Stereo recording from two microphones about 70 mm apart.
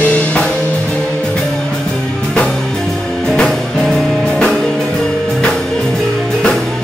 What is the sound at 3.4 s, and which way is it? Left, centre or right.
Music, centre.